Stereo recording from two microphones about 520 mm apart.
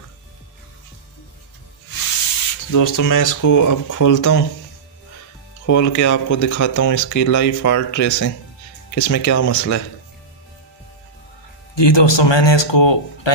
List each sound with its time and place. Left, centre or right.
2.7 s speech: left
5.7 s speech: left
11.7 s speech: left